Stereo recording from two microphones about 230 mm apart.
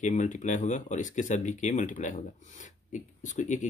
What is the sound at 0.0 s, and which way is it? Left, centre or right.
Speech, left.